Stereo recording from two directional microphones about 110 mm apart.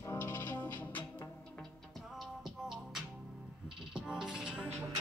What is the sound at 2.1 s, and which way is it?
Music, centre (ahead or behind).